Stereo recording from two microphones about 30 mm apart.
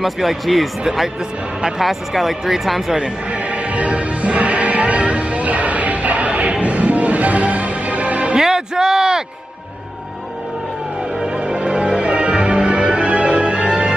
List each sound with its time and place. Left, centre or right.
0.0 s speech: centre
1.8 s speech: centre
3.3 s music: right
8.4 s a sound: right
11.2 s music: right
13.7 s music: right